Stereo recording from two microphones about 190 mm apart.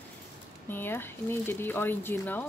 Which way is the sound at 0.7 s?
10° left (ahead or behind).